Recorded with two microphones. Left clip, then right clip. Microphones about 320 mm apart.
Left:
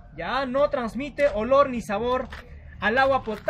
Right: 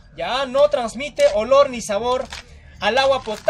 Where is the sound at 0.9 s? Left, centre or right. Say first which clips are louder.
Right 6 dB; right.